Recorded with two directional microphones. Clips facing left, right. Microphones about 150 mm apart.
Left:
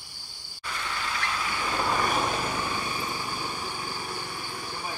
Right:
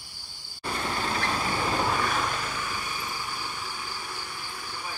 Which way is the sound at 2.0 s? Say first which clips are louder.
Left 2 dB; 20° left (ahead or behind).